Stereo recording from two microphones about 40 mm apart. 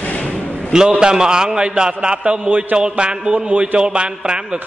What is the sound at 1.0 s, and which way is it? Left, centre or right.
A man's voice, centre.